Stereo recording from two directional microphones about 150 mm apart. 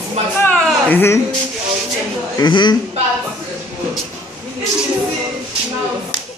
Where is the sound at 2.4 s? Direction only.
30° left (ahead or behind).